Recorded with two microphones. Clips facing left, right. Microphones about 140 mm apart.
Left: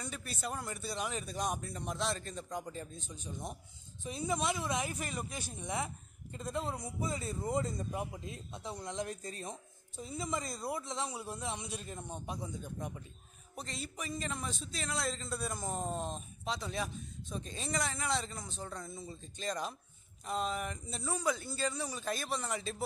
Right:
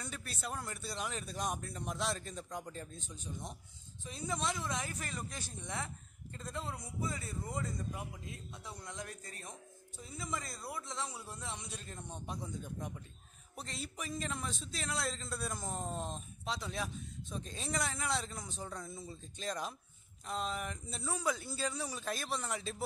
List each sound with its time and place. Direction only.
0.0 s a man's voice: centre (ahead or behind)